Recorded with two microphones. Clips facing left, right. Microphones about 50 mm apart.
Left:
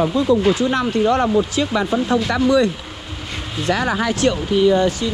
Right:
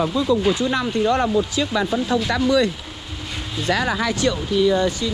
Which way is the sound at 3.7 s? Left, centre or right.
Left.